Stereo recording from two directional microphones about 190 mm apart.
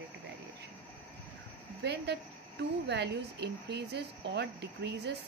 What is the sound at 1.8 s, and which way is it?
A woman's voice, 60° right (ahead or behind).